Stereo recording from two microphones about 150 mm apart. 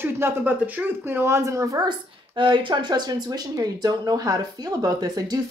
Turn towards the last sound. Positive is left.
turn(degrees=-25)  # may be behind; listen again after turning